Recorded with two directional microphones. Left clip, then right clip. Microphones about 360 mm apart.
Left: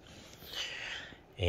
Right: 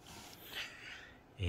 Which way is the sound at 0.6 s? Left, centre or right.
Centre.